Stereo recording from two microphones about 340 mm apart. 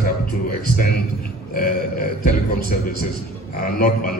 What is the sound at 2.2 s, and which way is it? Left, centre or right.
A man's voice, left.